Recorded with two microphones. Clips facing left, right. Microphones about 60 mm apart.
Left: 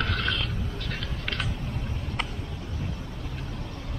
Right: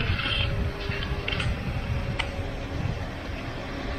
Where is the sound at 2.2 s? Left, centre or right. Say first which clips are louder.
Right 4 dB; right.